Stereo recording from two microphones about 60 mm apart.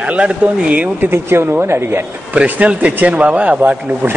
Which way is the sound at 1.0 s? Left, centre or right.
Right.